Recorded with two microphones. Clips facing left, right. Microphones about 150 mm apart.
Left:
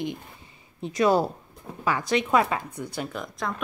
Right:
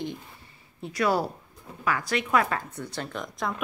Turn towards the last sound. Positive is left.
turn(degrees=0)  # may be behind; listen again after turning